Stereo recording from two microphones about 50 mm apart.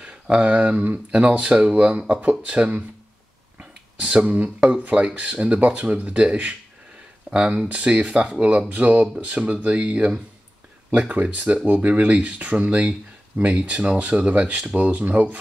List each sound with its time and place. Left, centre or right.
0.0 s speech: centre
3.5 s a sound: right
4.6 s speech: right